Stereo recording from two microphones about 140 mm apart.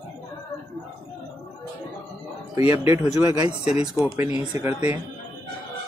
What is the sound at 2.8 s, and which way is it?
Speech, 15° right (ahead or behind).